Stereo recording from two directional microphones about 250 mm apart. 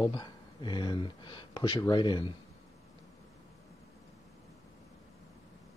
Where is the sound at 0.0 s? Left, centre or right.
Centre.